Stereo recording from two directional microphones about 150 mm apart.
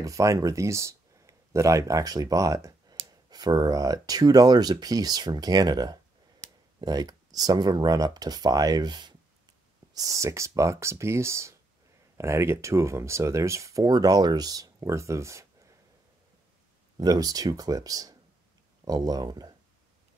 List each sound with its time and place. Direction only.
0.0 s speech: 20° right (ahead or behind)
16.9 s speech: 25° right (ahead or behind)